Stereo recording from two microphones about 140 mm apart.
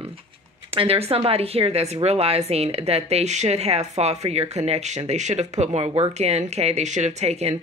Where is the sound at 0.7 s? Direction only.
45° right (ahead or behind).